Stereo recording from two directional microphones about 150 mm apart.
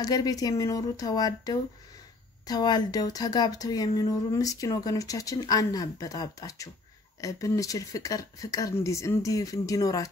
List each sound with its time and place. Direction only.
0.0 s speech: 25° left (ahead or behind)